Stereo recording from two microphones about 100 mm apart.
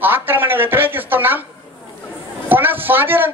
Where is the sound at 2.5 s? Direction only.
20° right (ahead or behind).